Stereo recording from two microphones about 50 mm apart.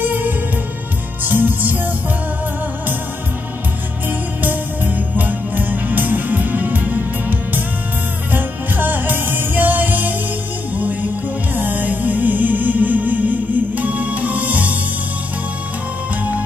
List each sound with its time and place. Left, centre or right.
0.0 s music: right
4.4 s music: right
16.2 s music: right